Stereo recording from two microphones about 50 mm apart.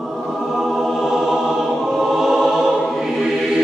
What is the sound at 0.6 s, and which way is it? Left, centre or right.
Music, centre.